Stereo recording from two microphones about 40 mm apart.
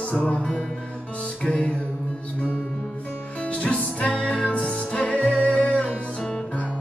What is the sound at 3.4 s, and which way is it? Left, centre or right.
Music, left.